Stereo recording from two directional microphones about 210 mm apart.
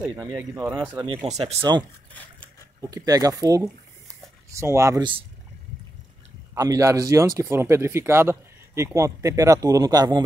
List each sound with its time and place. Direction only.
0.1 s speech: 15° right (ahead or behind)
0.7 s speech: 25° right (ahead or behind)
2.9 s speech: 15° right (ahead or behind)
6.5 s speech: 15° right (ahead or behind)